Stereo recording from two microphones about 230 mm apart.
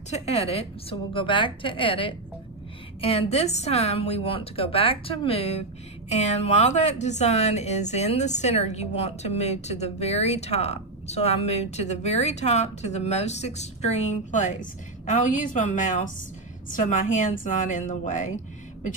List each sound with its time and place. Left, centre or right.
0.1 s a woman's voice: left